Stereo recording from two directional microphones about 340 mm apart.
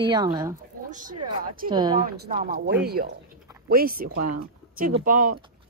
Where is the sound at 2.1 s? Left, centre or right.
Right.